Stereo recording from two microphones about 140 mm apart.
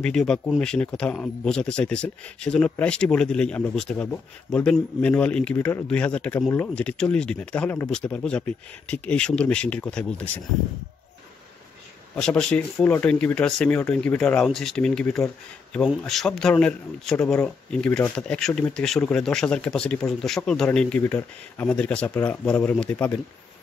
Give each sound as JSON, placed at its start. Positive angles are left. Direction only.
{"t": 0.0, "sound": "speech", "side_deg": 5}
{"t": 12.2, "sound": "speech", "side_deg": 5}
{"t": 21.0, "sound": "speech", "side_deg": 15}